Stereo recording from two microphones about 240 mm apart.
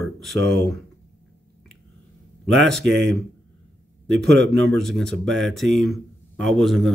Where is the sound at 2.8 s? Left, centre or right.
Right.